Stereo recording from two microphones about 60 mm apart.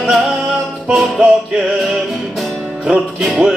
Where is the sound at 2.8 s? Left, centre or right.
Centre.